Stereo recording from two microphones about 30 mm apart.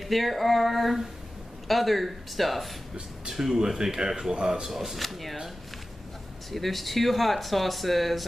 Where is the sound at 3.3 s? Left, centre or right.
Centre.